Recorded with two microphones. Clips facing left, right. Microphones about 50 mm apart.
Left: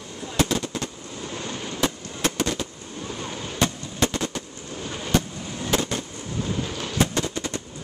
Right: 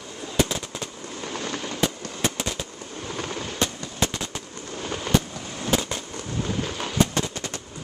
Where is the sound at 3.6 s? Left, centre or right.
Left.